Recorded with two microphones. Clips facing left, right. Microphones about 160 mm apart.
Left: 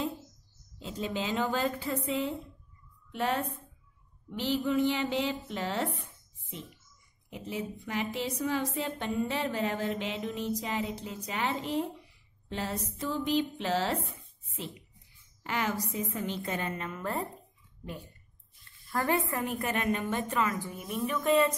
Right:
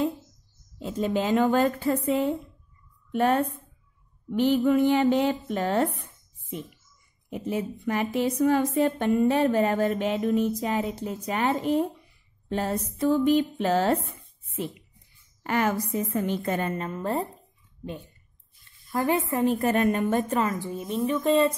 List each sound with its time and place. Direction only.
0.7 s a woman's voice: 50° right (ahead or behind)
7.2 s a woman's voice: 50° right (ahead or behind)
12.4 s a sound: 50° right (ahead or behind)
13.0 s a woman's voice: 50° right (ahead or behind); by 17.3 s 30° right (ahead or behind)
18.9 s a woman's voice: 20° right (ahead or behind)